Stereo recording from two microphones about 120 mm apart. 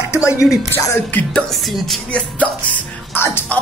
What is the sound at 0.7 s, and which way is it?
Speech, 20° left (ahead or behind).